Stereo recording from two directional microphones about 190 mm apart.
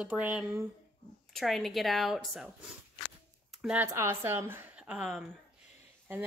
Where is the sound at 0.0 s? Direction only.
5° right (ahead or behind).